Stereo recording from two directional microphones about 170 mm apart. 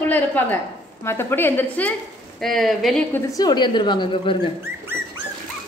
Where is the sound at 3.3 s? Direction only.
25° left (ahead or behind).